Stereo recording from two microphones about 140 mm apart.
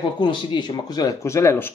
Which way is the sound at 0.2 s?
30° left (ahead or behind).